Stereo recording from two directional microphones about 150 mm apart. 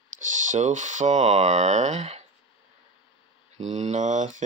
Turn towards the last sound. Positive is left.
turn(degrees=-55)  # may be behind; listen again after turning